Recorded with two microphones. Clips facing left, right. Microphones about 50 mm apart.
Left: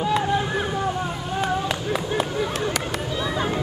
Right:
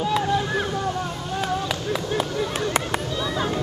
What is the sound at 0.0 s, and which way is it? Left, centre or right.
Boat, centre.